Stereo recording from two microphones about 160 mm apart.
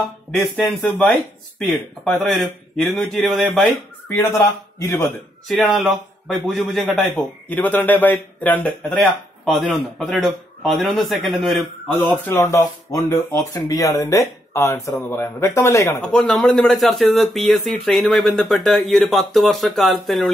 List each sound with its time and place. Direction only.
0.4 s speech: centre (ahead or behind)
4.1 s speech: 15° left (ahead or behind)
5.5 s speech: centre (ahead or behind)
12.1 s speech: 15° left (ahead or behind)
16.0 s speech: 5° left (ahead or behind)